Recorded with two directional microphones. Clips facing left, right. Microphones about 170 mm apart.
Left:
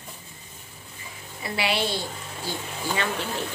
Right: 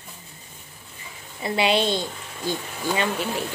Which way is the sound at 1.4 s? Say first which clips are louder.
Right 5 dB; 20° right (ahead or behind).